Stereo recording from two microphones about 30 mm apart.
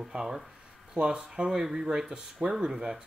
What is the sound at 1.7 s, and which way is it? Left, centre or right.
Speech, right.